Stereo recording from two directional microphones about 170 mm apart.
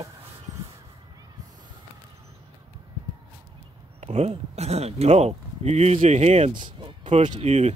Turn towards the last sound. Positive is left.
turn(degrees=-40)  # may be behind; listen again after turning